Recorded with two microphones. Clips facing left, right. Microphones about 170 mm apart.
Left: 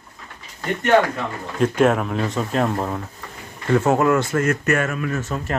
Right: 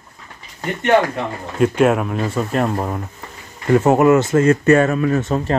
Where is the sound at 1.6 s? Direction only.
5° right (ahead or behind); by 5.5 s 35° right (ahead or behind).